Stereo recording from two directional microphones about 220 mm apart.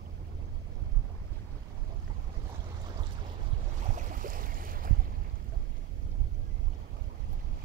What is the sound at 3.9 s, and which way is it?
Boat, 35° right (ahead or behind).